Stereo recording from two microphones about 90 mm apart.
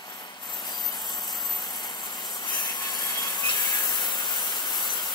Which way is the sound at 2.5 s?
55° left (ahead or behind).